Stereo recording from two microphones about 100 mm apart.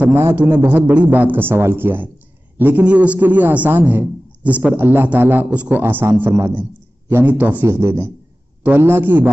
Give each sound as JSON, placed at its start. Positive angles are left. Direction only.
{"t": 0.0, "sound": "a man's voice", "side_deg": -20}